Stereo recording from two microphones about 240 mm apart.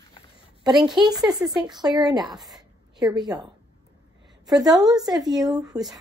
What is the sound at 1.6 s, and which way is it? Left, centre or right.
Speech, centre.